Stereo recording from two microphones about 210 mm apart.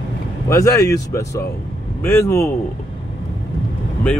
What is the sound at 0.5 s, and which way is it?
Speech, 15° left (ahead or behind).